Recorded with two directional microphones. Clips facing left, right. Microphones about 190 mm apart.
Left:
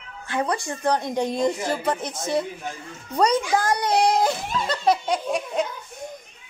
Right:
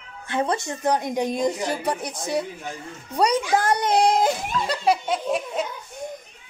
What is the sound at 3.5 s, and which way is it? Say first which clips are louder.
Speech: right 1 dB; 25° right (ahead or behind).